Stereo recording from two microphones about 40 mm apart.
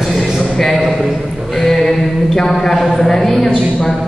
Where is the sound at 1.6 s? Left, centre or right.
Centre.